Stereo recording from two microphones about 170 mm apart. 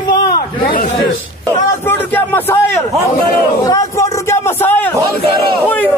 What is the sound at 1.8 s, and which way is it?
Speech, 10° left (ahead or behind).